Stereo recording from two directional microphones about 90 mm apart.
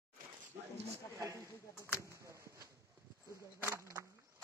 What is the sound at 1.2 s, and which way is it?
Speech, 35° right (ahead or behind).